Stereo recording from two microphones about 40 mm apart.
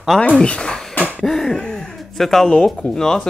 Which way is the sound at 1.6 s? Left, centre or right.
Centre.